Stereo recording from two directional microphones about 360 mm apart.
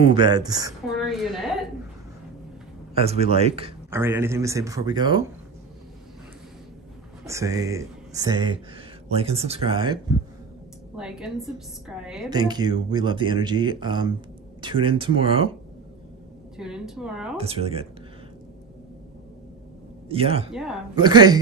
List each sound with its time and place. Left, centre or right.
0.0 s speech: centre
0.9 s a sound: centre
2.9 s speech: centre
7.2 s speech: centre
11.0 s a woman's voice: centre
16.5 s a woman's voice: centre
17.4 s speech: centre
20.1 s speech: centre
20.5 s a woman's voice: centre